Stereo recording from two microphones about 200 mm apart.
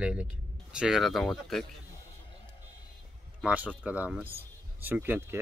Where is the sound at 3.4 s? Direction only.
5° right (ahead or behind).